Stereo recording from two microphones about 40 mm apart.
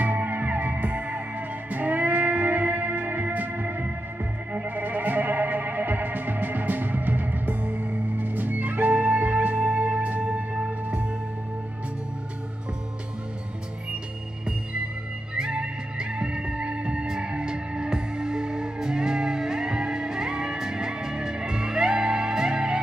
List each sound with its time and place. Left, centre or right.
0.0 s music: right
10.2 s music: right
15.3 s music: right